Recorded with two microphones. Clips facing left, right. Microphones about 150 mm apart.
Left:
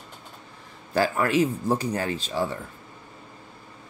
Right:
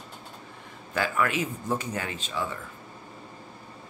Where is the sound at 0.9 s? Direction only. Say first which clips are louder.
Left 5 dB; 35° left (ahead or behind).